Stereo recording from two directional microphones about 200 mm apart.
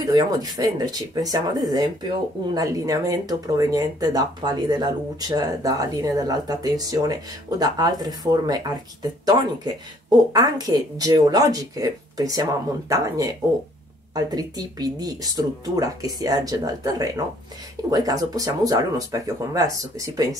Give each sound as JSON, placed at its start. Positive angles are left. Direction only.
{"t": 0.0, "sound": "speech", "side_deg": -20}